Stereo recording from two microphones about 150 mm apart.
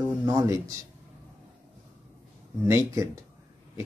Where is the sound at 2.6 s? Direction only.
20° right (ahead or behind).